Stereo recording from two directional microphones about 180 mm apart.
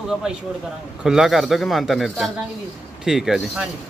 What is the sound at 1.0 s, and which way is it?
Speech, centre (ahead or behind).